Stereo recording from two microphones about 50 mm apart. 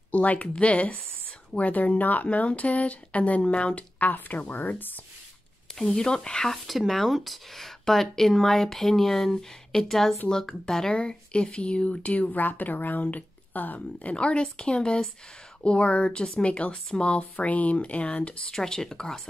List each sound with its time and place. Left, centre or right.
0.1 s speech: left
5.8 s speech: centre
6.5 s speech: centre; by 14.1 s left
14.1 s speech: left
17.2 s speech: left
18.6 s speech: centre